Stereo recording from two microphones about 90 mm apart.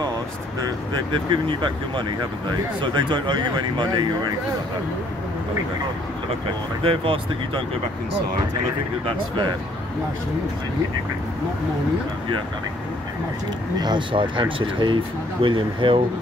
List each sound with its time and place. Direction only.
1.1 s speech: 65° right (ahead or behind)
6.8 s speech: 90° right
13.7 s speech: 55° right (ahead or behind)